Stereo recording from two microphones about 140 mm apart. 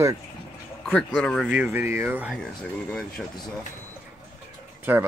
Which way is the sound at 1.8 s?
20° right (ahead or behind).